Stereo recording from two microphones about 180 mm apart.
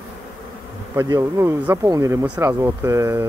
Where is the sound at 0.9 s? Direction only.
15° right (ahead or behind).